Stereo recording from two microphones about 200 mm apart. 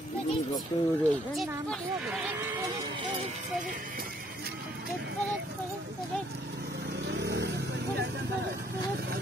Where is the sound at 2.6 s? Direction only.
20° right (ahead or behind).